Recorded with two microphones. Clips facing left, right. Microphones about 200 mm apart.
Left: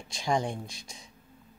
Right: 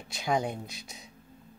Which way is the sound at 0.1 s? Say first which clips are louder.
Even; 5° right (ahead or behind).